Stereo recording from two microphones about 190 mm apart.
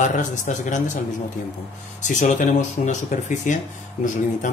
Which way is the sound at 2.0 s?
40° left (ahead or behind).